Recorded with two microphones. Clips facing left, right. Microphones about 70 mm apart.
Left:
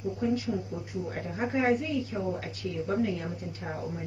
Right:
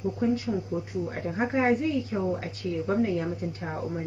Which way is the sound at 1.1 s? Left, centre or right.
Right.